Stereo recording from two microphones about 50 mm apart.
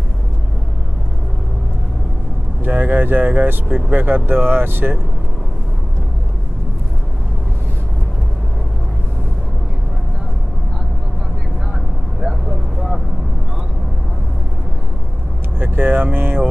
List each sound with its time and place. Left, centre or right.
2.6 s speech: right
12.2 s vehicle: centre
15.6 s speech: right